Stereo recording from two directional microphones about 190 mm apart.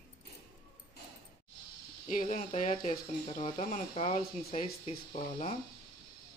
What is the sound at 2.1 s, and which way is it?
Speech, 40° left (ahead or behind).